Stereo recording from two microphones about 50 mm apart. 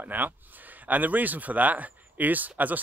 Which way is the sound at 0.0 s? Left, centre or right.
Right.